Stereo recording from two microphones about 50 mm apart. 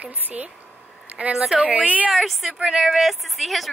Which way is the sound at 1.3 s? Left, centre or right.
Centre.